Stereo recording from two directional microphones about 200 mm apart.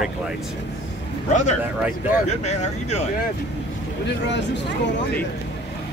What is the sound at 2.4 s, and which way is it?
Speech, 35° left (ahead or behind).